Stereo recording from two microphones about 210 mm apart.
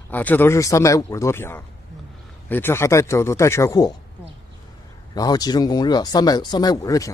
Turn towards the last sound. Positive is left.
turn(degrees=15)  # may be behind; listen again after turning